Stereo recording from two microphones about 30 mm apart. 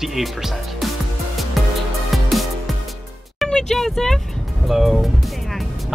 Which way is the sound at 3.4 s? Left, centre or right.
Left.